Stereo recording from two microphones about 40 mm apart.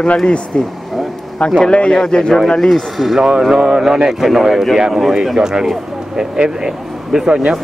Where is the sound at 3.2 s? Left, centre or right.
Centre.